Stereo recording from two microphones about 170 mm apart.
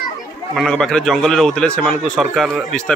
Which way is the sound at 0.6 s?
5° left (ahead or behind).